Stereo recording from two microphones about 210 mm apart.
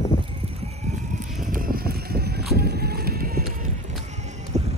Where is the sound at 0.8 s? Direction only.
35° right (ahead or behind).